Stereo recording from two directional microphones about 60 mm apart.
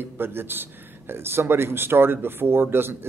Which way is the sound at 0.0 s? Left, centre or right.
Right.